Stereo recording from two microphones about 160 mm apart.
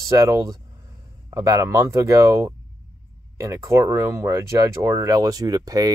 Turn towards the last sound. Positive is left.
turn(degrees=-25)  # may be behind; listen again after turning